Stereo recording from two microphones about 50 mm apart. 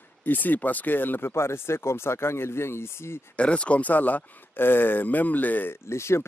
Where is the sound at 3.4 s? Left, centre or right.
Left.